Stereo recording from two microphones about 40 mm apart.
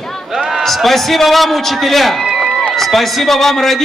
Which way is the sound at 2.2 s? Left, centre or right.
Centre.